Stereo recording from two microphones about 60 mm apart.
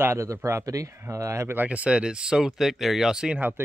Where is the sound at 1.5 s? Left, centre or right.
Right.